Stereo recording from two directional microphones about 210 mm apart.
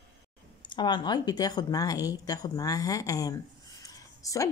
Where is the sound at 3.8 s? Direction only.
15° left (ahead or behind).